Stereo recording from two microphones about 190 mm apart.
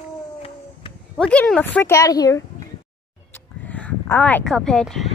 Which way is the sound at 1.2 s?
5° left (ahead or behind).